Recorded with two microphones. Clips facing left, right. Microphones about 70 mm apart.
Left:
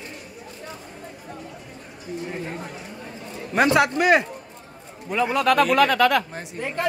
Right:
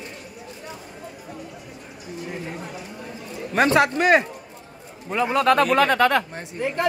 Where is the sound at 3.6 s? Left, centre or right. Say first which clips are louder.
Even; right.